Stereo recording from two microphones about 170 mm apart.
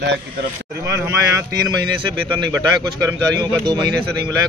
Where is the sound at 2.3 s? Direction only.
25° right (ahead or behind).